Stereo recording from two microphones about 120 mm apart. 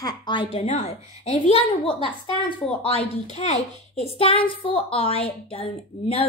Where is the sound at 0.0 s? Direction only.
40° left (ahead or behind).